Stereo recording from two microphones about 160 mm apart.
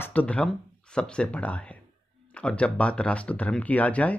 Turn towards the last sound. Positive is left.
turn(degrees=10)  # may be behind; listen again after turning